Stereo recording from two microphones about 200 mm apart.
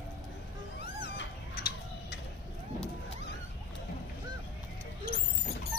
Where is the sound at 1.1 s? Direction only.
55° left (ahead or behind).